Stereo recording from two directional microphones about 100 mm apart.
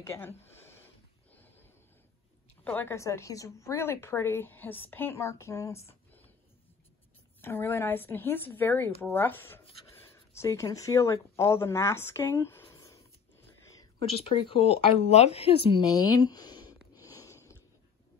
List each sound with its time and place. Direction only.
0.0 s a sound: 25° left (ahead or behind)
2.6 s speech: 20° left (ahead or behind)
7.4 s speech: 25° left (ahead or behind)
12.7 s a sound: 30° left (ahead or behind)
14.3 s speech: 60° left (ahead or behind)
15.8 s sniff: 40° left (ahead or behind)